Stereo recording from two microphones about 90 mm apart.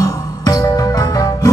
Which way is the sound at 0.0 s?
40° left (ahead or behind).